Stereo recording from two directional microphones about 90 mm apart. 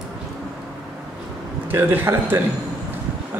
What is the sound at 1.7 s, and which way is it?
Speech, 25° right (ahead or behind).